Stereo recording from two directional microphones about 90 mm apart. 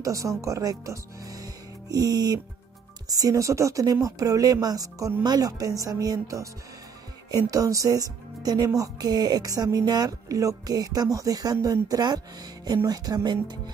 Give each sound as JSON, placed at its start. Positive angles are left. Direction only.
{"t": 0.0, "sound": "speech", "side_deg": -35}